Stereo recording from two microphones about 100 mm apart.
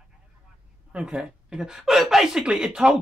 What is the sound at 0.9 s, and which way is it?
A woman's voice, 10° right (ahead or behind).